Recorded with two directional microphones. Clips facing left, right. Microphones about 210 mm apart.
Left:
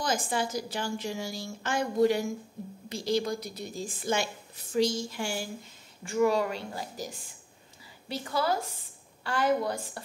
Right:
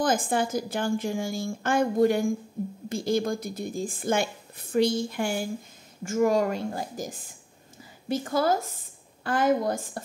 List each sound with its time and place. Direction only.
0.0 s a woman's voice: 50° right (ahead or behind)